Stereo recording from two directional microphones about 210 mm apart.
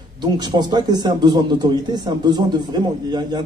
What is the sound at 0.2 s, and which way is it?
A man's voice, 20° right (ahead or behind).